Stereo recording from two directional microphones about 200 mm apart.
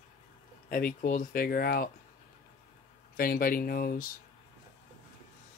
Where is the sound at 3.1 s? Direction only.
45° left (ahead or behind).